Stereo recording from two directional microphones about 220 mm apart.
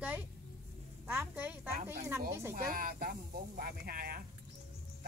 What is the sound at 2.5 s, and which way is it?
Speech, 40° right (ahead or behind).